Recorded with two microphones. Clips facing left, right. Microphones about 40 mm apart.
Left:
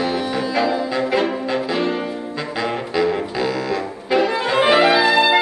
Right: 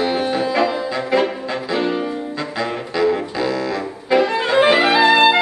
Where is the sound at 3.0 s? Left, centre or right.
Centre.